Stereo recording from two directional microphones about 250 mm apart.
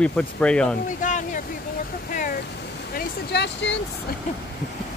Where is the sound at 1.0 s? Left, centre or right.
Left.